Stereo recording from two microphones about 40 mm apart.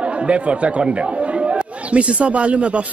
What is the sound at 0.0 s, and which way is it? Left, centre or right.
Speech, right.